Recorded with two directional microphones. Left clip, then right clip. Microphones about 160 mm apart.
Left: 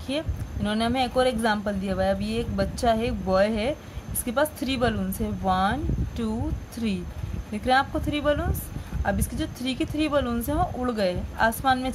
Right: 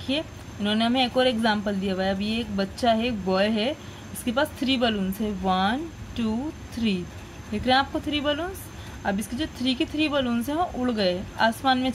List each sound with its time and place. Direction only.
0.1 s speech: 5° left (ahead or behind)
7.5 s speech: 5° left (ahead or behind)